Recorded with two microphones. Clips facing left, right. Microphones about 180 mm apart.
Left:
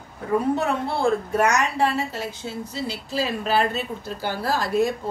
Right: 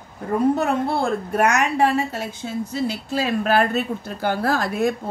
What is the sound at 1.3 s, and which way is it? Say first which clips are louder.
A woman's voice: right 7 dB; 55° right (ahead or behind).